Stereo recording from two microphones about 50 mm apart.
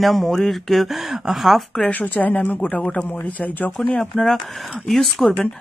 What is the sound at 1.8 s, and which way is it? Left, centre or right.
Speech, left.